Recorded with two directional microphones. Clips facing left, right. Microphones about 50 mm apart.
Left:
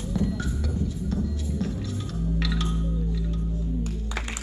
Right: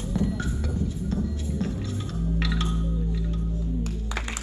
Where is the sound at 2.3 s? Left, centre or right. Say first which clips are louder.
Right 1 dB; right.